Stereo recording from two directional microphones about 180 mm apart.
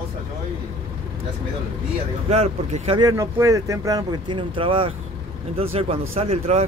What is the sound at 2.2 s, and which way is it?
Speech, 35° right (ahead or behind).